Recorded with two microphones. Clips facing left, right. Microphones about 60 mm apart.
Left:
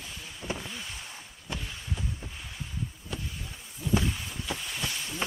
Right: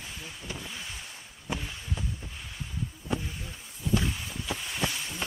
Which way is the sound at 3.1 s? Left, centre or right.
Right.